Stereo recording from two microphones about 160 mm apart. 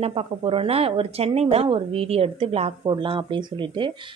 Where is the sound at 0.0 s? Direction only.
35° right (ahead or behind).